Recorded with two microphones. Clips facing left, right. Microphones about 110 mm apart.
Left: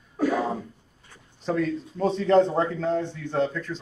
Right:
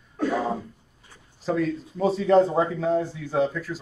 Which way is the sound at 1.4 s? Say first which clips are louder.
Right 1 dB; centre (ahead or behind).